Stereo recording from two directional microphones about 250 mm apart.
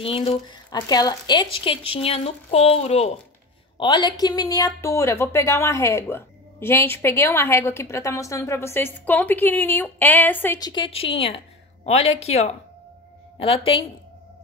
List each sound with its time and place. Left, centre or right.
0.0 s speech: left